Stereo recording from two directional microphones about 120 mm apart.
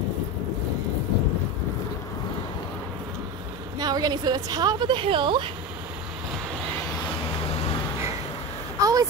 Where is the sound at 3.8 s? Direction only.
35° right (ahead or behind).